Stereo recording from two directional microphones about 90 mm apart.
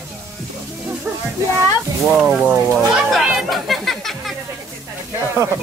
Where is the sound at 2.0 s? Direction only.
5° right (ahead or behind).